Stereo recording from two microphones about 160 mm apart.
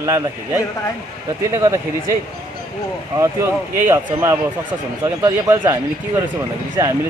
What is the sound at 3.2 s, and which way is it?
Speech, 15° right (ahead or behind).